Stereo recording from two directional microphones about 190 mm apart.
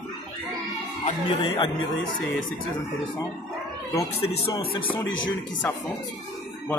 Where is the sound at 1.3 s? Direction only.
25° left (ahead or behind).